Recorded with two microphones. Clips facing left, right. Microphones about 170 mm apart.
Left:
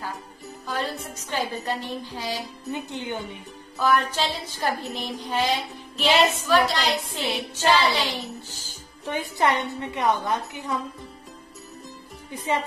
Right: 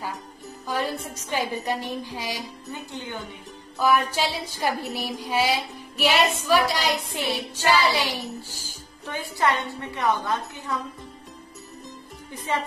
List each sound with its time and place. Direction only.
0.7 s music: 10° right (ahead or behind)
2.7 s a woman's voice: 20° left (ahead or behind)
3.8 s music: 10° right (ahead or behind)
9.0 s a woman's voice: 20° left (ahead or behind)